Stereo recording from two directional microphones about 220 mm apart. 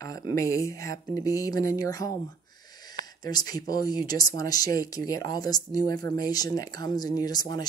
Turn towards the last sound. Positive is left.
turn(degrees=20)  # may be behind; listen again after turning